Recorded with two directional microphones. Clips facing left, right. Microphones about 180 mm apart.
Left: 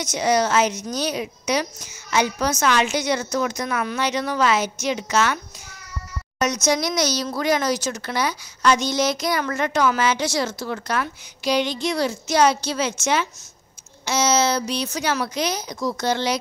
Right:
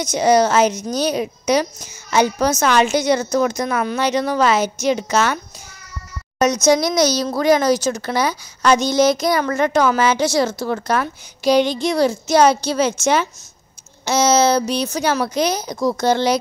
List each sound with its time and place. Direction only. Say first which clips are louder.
0.0 s speech: right 6 dB; 40° right (ahead or behind)
6.4 s a woman's voice: right 6 dB; 35° right (ahead or behind)